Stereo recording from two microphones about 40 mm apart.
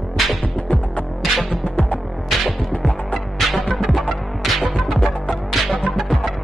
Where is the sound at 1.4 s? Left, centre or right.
Left.